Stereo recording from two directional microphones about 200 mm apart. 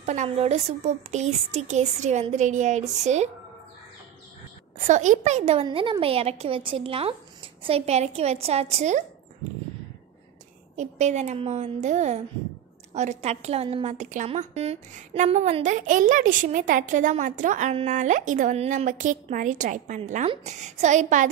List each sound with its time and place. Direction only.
0.0 s a woman's voice: 35° right (ahead or behind)
4.8 s a child's voice: 35° right (ahead or behind)
10.8 s a woman's voice: 35° right (ahead or behind)